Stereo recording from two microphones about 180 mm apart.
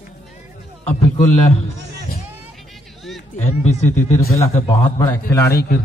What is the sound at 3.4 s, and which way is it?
A man's voice, 40° left (ahead or behind).